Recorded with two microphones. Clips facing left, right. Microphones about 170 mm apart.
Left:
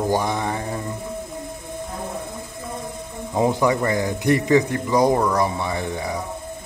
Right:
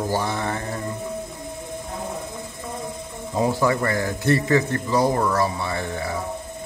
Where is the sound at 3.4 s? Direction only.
20° left (ahead or behind).